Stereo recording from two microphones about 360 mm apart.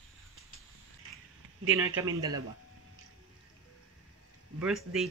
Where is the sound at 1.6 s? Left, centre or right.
Right.